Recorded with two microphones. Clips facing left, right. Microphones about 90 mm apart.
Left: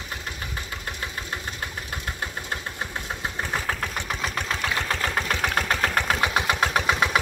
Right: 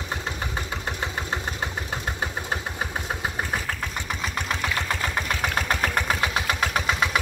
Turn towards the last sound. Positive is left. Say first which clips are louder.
# left 2 dB
turn(degrees=15)  # may be behind; listen again after turning